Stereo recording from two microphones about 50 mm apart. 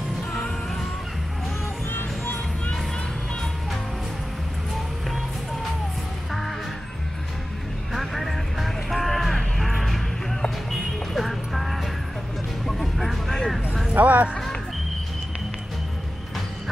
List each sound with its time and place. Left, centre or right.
0.3 s music: centre
1.9 s music: left
7.9 s vehicle: centre
10.7 s music: centre
13.9 s a sound: right